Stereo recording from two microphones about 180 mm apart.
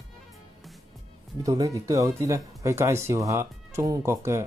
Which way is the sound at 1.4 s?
20° right (ahead or behind).